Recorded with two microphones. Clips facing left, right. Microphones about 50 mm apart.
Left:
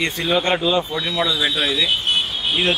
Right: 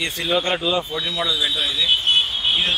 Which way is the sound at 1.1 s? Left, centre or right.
Left.